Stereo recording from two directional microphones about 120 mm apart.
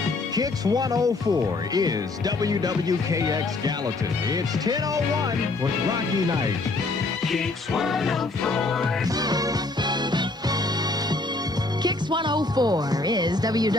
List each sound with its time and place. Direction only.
0.4 s music: 30° right (ahead or behind)
7.3 s music: centre (ahead or behind)
9.2 s music: 35° right (ahead or behind)
11.8 s music: 40° right (ahead or behind)